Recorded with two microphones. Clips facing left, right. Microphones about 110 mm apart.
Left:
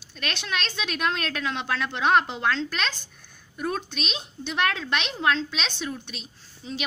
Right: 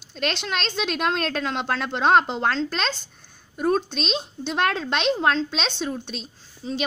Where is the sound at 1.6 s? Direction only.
35° right (ahead or behind).